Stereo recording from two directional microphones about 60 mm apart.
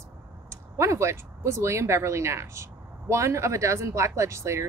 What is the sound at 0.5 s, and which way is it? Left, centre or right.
Speech, right.